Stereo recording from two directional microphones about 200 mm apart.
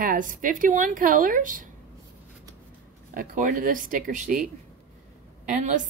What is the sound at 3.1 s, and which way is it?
A woman's voice, 40° right (ahead or behind).